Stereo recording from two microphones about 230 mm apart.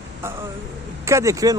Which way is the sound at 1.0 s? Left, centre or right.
Centre.